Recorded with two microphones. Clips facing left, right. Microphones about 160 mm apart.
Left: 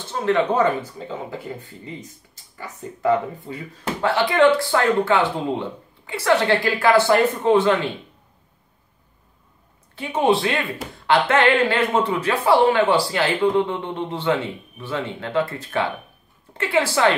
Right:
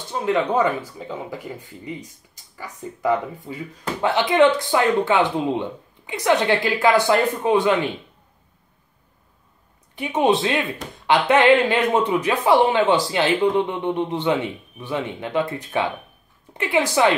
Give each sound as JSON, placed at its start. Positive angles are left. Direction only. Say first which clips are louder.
{"t": 0.1, "sound": "a man's voice", "louder": "left 1 dB", "side_deg": -15}
{"t": 9.9, "sound": "a man's voice", "louder": "even", "side_deg": -20}